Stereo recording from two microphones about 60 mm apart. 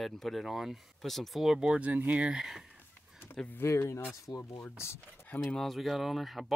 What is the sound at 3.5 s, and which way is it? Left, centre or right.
Speech, left.